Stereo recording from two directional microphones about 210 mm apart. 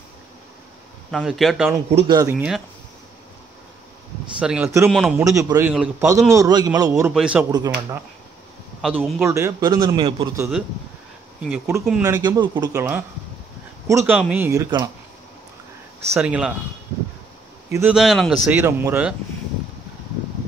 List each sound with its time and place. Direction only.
1.1 s a man's voice: centre (ahead or behind)
2.0 s speech: 20° right (ahead or behind)
4.4 s a man's voice: 5° right (ahead or behind)
5.2 s speech: 15° right (ahead or behind)
6.9 s a man's voice: 5° right (ahead or behind)
8.8 s a man's voice: centre (ahead or behind)
9.2 s speech: 15° right (ahead or behind)
16.1 s a man's voice: 5° right (ahead or behind)
17.6 s speech: 10° right (ahead or behind)
17.9 s speech: centre (ahead or behind)